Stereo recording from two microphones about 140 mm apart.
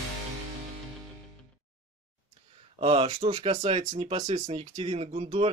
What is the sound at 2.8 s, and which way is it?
Speech, 45° right (ahead or behind).